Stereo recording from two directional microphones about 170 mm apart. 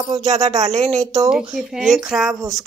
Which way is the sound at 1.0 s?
20° right (ahead or behind).